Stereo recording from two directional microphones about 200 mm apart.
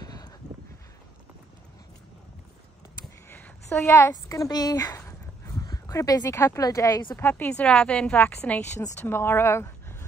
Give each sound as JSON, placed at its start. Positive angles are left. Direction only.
{"t": 0.0, "sound": "a sound", "side_deg": 20}
{"t": 3.3, "sound": "a woman's voice", "side_deg": 10}
{"t": 7.2, "sound": "speech", "side_deg": 10}